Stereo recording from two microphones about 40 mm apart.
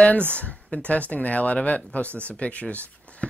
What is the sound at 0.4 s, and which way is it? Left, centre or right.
Speech, left.